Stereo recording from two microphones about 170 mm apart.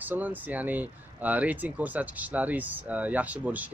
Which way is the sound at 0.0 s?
10° right (ahead or behind).